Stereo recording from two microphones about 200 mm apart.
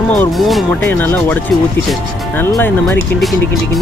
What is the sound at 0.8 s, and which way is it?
Speech, 10° left (ahead or behind).